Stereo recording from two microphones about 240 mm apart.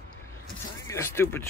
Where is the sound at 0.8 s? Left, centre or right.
Centre.